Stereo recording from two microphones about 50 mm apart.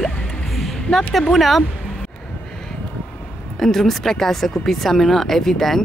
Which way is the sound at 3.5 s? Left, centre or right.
Centre.